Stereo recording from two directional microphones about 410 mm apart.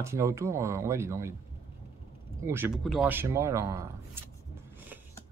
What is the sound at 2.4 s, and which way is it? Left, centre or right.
Speech, centre.